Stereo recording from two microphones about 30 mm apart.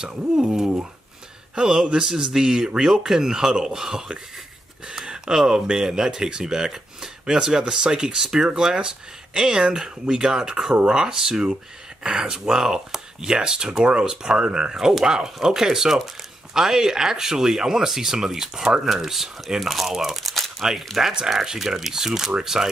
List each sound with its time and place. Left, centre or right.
0.4 s speech: right
4.9 s a sound: right
5.8 s speech: centre
8.2 s speech: centre
8.5 s speech: right
20.2 s crumpling: centre
20.6 s speech: centre